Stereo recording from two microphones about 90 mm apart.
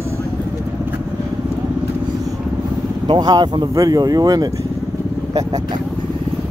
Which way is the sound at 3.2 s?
50° right (ahead or behind).